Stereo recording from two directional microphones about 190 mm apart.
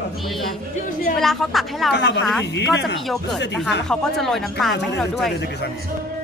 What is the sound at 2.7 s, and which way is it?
Speech, 65° left (ahead or behind).